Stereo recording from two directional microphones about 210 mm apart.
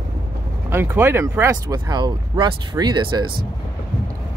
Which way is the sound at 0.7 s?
10° right (ahead or behind).